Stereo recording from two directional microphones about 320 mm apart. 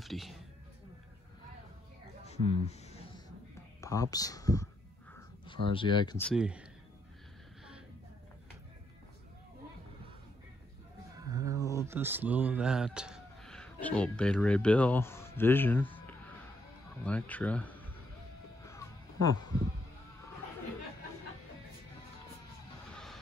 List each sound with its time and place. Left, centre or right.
0.0 s music: centre
2.2 s a sound: centre
3.8 s speech: centre
5.7 s speech: centre
11.1 s speech: centre
18.7 s music: centre